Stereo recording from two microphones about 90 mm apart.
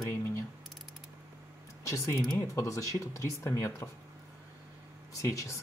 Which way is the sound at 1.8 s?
35° left (ahead or behind).